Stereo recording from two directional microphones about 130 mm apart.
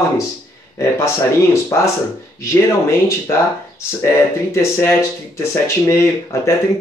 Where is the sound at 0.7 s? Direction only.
20° left (ahead or behind).